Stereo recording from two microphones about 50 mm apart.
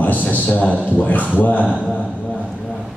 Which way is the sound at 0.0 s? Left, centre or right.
Left.